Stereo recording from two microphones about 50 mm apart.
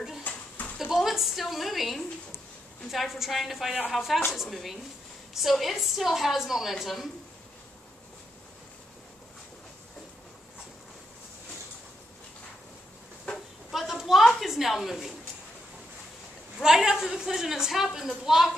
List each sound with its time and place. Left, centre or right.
0.2 s children playing: left
0.7 s a woman's voice: centre
13.7 s a sound: centre
16.6 s a woman's voice: centre